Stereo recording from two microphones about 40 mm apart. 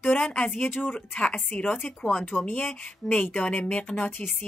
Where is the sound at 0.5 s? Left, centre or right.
Left.